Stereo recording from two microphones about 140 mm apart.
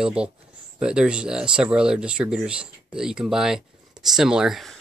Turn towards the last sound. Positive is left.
turn(degrees=0)  # may be behind; listen again after turning